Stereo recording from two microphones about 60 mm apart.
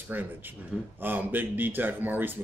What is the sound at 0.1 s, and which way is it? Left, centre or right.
Speech, right.